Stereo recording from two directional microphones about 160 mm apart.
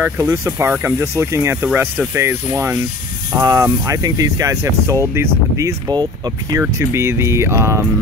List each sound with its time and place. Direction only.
0.0 s speech: 15° right (ahead or behind)